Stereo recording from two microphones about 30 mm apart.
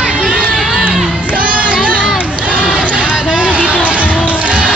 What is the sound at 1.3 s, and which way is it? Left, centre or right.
Music, right.